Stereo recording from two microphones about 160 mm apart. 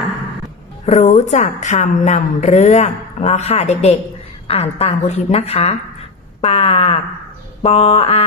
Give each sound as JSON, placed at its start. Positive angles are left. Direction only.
{"t": 0.8, "sound": "a woman's voice", "side_deg": 45}